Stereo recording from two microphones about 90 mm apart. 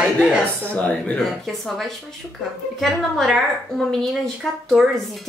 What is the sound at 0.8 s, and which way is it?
Speech, 15° left (ahead or behind).